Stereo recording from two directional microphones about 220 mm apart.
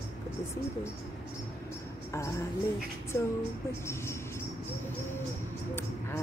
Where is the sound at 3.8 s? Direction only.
10° left (ahead or behind).